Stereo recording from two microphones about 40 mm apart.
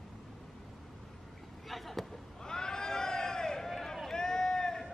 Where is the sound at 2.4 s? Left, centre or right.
Centre.